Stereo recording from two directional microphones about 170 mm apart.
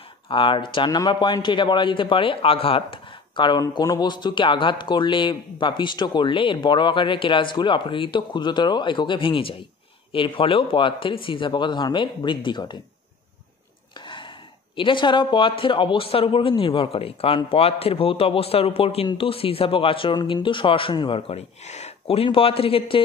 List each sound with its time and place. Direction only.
0.3 s a man's voice: 30° left (ahead or behind)
13.9 s speech: 30° left (ahead or behind)